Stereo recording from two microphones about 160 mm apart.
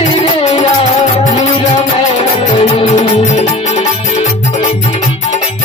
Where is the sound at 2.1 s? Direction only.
35° left (ahead or behind).